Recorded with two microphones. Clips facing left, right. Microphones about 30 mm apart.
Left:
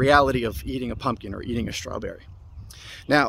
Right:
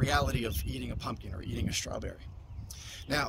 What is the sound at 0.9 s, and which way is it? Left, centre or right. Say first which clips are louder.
Speech: left 12 dB; left.